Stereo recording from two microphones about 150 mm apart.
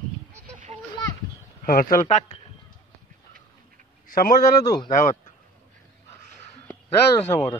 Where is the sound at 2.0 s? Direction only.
50° left (ahead or behind).